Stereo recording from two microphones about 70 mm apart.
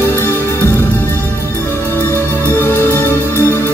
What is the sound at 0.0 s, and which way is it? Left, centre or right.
Music, left.